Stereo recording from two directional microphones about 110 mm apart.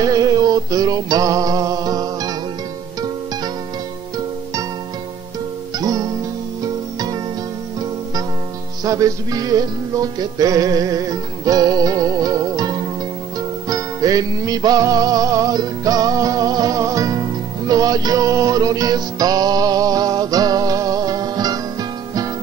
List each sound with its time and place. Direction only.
0.0 s music: 35° right (ahead or behind)
5.8 s music: 35° right (ahead or behind)
8.8 s music: 30° right (ahead or behind)